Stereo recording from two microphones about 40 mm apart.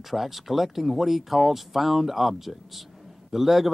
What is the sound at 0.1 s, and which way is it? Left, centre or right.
Speech, centre.